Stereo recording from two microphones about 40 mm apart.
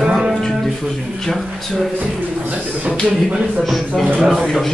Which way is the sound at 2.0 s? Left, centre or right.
Right.